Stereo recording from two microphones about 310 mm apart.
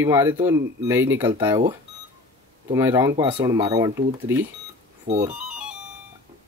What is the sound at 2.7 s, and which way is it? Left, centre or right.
Speech, centre.